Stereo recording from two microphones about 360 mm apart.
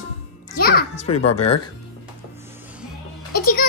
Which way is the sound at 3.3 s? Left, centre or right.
Left.